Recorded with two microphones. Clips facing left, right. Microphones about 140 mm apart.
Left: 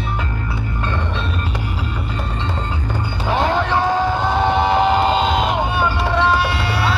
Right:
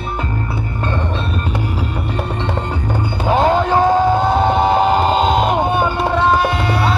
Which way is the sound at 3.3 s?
45° right (ahead or behind).